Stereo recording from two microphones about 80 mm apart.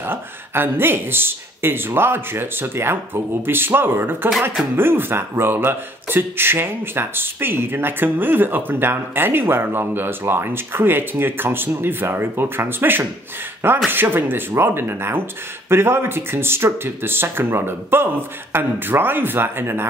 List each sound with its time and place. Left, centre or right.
0.0 s speech: right